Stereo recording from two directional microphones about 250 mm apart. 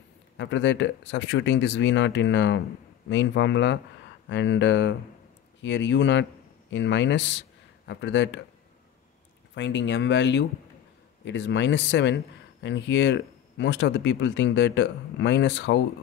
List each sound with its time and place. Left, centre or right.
0.4 s a man's voice: left
9.6 s speech: left